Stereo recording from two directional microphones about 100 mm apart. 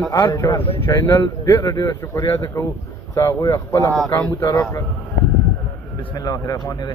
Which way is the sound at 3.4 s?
30° left (ahead or behind).